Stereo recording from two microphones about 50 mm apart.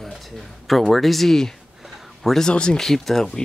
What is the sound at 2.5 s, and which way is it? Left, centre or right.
Speech, centre.